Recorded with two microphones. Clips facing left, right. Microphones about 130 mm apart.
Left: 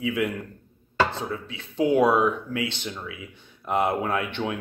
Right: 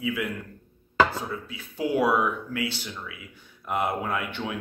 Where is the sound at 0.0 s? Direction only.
25° left (ahead or behind).